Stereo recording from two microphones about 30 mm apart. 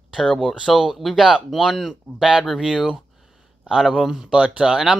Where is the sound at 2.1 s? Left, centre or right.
Right.